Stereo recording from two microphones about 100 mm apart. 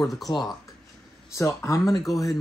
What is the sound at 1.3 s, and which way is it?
Speech, 30° left (ahead or behind).